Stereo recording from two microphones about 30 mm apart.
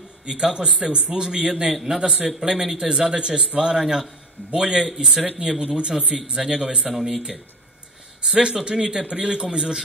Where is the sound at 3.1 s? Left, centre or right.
Right.